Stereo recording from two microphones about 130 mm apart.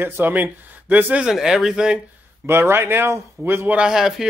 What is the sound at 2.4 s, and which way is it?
Speech, 20° right (ahead or behind).